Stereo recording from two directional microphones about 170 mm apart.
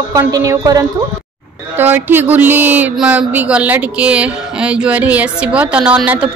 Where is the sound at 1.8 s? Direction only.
10° right (ahead or behind).